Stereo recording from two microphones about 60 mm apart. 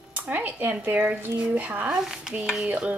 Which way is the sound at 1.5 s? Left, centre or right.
Right.